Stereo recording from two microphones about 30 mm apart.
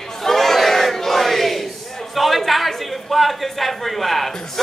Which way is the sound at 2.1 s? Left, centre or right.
Centre.